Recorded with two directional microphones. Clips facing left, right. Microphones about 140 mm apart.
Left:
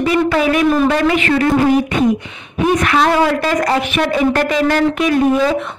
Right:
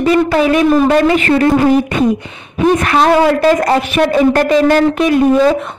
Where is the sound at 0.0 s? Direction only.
35° right (ahead or behind).